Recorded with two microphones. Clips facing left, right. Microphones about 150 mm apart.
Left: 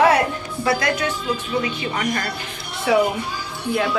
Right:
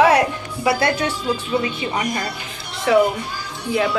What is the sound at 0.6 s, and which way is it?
Speech, 30° right (ahead or behind).